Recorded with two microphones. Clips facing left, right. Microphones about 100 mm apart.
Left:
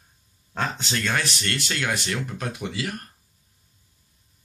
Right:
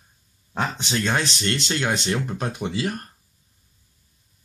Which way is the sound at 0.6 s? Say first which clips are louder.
Right 2 dB; 20° right (ahead or behind).